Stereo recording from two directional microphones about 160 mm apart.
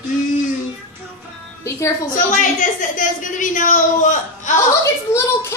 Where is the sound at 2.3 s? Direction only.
55° left (ahead or behind).